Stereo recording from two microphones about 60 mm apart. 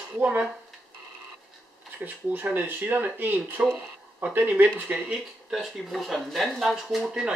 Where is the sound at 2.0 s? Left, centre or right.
Right.